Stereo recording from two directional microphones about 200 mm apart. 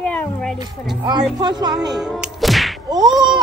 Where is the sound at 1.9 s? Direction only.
5° right (ahead or behind).